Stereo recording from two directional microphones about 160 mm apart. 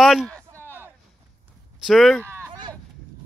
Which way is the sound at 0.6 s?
15° left (ahead or behind).